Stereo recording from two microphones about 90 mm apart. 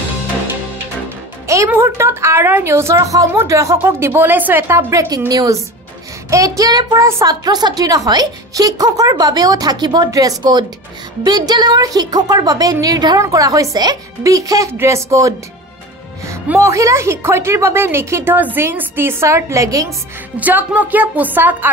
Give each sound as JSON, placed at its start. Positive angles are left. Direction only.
{"t": 1.8, "sound": "a woman's voice", "side_deg": -30}
{"t": 5.3, "sound": "a woman's voice", "side_deg": -45}
{"t": 14.7, "sound": "a woman's voice", "side_deg": -30}
{"t": 16.5, "sound": "a woman's voice", "side_deg": -35}
{"t": 20.3, "sound": "speech", "side_deg": -15}